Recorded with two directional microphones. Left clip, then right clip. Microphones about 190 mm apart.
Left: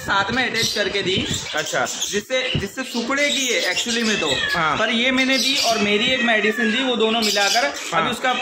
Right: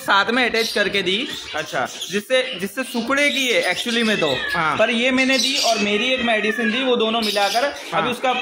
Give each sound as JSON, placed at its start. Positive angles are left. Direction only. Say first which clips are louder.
{"t": 0.1, "sound": "speech", "louder": "right 3 dB", "side_deg": -60}
{"t": 3.1, "sound": "speech", "louder": "right 2 dB", "side_deg": -60}